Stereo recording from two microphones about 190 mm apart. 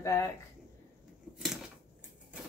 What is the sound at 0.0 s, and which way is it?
Speech, 15° left (ahead or behind).